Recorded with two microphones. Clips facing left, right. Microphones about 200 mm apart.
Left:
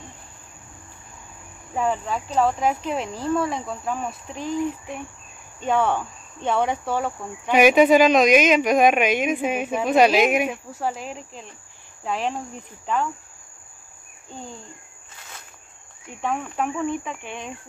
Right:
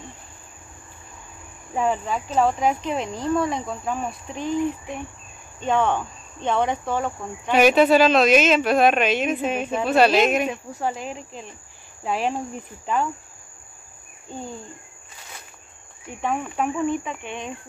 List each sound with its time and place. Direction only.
1.8 s speech: 5° right (ahead or behind)
5.6 s cricket: 10° left (ahead or behind)
10.7 s speech: centre (ahead or behind)
16.2 s speech: centre (ahead or behind)